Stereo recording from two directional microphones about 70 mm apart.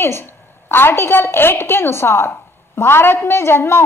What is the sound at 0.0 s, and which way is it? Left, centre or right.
A woman's voice, left.